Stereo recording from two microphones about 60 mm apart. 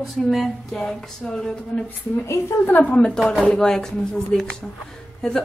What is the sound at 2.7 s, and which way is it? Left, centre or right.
Speech, left.